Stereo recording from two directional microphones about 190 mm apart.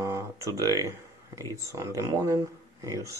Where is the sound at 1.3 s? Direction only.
15° right (ahead or behind).